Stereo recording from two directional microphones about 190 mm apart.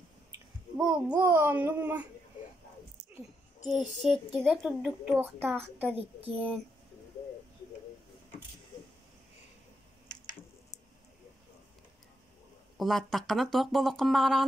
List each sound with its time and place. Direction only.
0.7 s a child's voice: 5° right (ahead or behind)
3.6 s a child's voice: centre (ahead or behind)
5.9 s a child's voice: 30° right (ahead or behind)
12.7 s speech: centre (ahead or behind)